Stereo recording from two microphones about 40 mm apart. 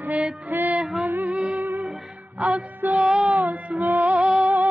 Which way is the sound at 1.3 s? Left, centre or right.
Right.